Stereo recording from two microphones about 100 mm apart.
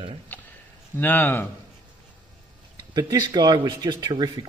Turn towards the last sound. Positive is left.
turn(degrees=-45)  # may be behind; listen again after turning